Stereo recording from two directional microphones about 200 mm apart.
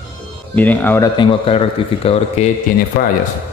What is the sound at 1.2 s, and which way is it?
Speech, 25° left (ahead or behind).